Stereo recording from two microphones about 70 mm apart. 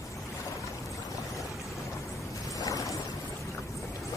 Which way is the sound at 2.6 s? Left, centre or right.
Left.